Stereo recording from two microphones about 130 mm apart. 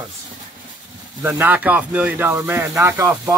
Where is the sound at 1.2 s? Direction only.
15° right (ahead or behind).